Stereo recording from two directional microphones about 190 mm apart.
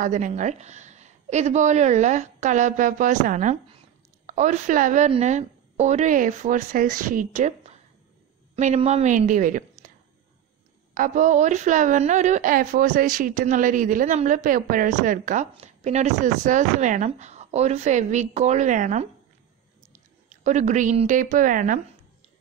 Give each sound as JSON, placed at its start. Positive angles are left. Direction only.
{"t": 0.0, "sound": "a woman's voice", "side_deg": -40}
{"t": 11.0, "sound": "a woman's voice", "side_deg": -40}
{"t": 20.2, "sound": "a woman's voice", "side_deg": -40}